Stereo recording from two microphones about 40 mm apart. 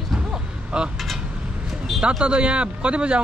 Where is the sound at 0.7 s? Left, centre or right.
Right.